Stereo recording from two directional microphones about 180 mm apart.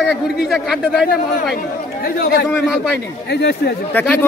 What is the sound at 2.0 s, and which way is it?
Speech, 60° left (ahead or behind).